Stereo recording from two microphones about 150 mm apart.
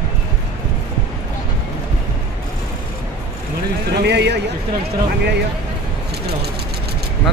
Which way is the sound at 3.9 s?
90° right.